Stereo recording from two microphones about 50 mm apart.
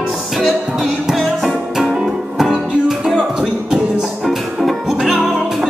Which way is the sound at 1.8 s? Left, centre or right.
Centre.